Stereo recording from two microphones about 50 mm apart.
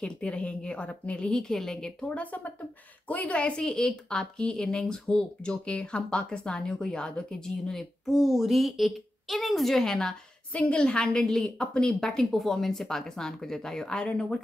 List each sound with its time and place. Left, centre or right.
0.0 s a woman's voice: centre
10.5 s a woman's voice: left